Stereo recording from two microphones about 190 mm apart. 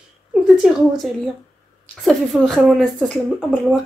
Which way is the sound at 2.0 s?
Centre (ahead or behind).